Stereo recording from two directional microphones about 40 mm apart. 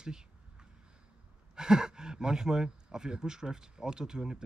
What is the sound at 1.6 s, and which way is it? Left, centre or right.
Speech, centre.